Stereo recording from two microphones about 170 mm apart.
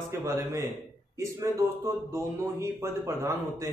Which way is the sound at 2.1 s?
15° right (ahead or behind).